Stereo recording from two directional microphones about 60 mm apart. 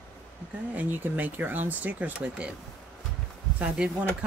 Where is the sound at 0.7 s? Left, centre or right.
Right.